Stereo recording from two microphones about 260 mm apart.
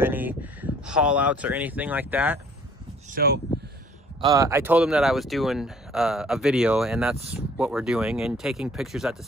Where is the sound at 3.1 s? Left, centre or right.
Right.